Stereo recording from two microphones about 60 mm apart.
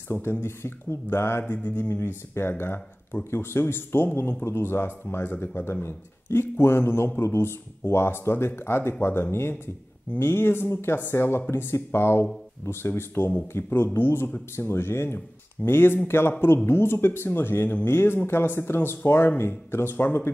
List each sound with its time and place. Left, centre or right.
0.1 s speech: left
1.5 s speech: left
1.9 s a man's voice: left